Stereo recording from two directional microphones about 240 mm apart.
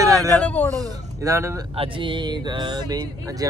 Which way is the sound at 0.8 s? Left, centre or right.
Centre.